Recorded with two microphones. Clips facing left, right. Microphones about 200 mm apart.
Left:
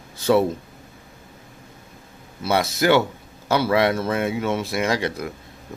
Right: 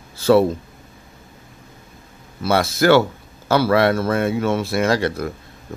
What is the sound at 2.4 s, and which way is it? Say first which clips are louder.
Speech: right 3 dB; 20° left (ahead or behind).